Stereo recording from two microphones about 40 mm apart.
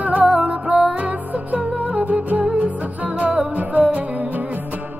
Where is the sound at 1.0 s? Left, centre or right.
Right.